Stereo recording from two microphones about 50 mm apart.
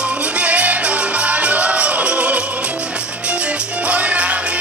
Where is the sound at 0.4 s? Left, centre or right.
Right.